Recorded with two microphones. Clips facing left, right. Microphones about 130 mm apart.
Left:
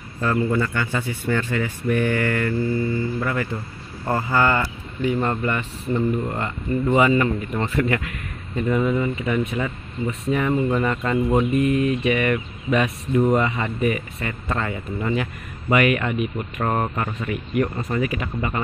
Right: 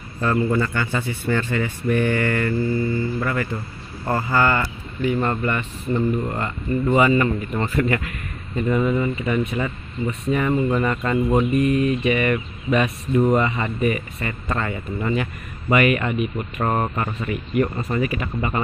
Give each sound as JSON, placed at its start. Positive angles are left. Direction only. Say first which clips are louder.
{"t": 0.2, "sound": "speech", "louder": "right 1 dB", "side_deg": -5}